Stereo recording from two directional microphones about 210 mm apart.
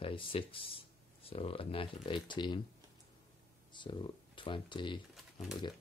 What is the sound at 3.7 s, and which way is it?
Speech, 25° left (ahead or behind).